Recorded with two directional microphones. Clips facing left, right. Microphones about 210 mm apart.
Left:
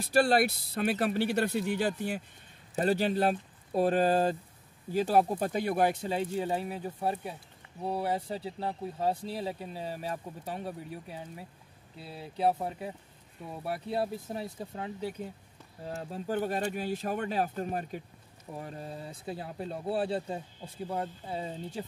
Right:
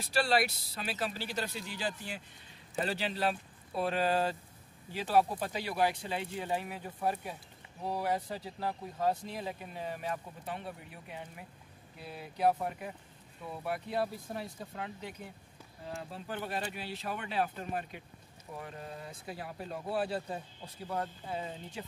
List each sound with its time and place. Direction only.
0.0 s speech: 50° left (ahead or behind); by 21.8 s 30° left (ahead or behind)